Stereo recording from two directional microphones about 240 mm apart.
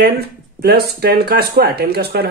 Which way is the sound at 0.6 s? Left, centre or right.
Right.